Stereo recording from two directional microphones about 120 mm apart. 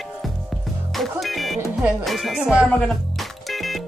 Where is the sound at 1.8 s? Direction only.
Centre (ahead or behind).